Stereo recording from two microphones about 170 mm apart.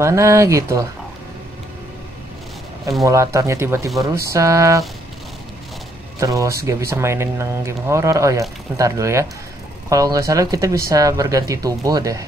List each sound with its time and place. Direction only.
0.0 s speech: 20° right (ahead or behind)
3.1 s speech: 20° right (ahead or behind)
6.1 s speech: 20° right (ahead or behind)